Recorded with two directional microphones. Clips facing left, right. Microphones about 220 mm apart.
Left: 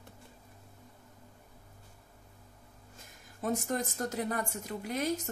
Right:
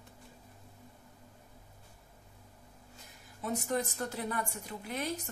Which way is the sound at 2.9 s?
45° left (ahead or behind).